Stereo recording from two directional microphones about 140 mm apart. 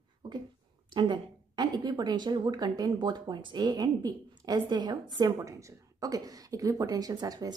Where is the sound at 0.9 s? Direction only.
30° right (ahead or behind).